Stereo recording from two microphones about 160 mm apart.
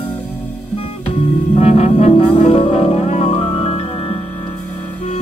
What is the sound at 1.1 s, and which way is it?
Music, 40° left (ahead or behind).